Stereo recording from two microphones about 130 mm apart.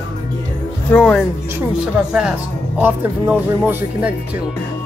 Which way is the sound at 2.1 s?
5° right (ahead or behind).